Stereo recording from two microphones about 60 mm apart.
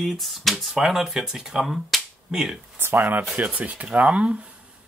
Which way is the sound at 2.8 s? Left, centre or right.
Right.